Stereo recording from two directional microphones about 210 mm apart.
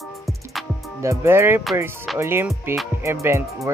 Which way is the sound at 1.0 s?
10° right (ahead or behind).